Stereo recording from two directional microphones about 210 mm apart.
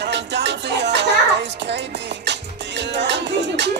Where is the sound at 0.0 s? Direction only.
55° right (ahead or behind).